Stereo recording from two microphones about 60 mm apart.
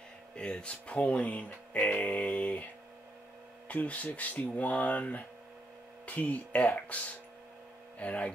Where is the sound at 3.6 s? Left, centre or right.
Left.